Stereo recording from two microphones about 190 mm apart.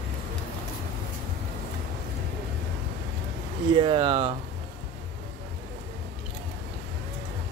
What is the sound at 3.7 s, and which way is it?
Speech, 25° right (ahead or behind).